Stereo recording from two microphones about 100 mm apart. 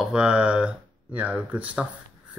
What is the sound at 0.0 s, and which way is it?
Speech, 10° right (ahead or behind).